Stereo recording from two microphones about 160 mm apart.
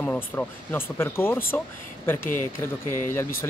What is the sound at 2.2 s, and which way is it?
Speech, 55° left (ahead or behind).